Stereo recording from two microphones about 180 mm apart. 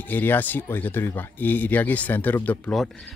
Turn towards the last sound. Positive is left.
turn(degrees=5)  # may be behind; listen again after turning